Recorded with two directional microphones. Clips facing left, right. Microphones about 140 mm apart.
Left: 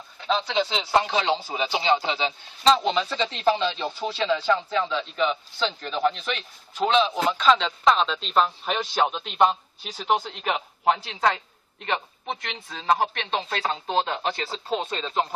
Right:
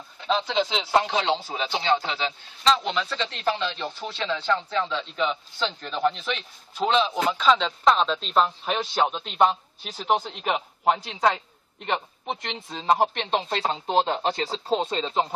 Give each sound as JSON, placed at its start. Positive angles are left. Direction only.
{"t": 0.2, "sound": "a man's voice", "side_deg": 0}
{"t": 12.3, "sound": "speech", "side_deg": -20}